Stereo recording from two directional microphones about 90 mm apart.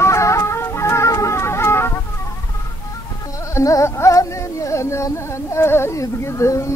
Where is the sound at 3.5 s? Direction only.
35° left (ahead or behind).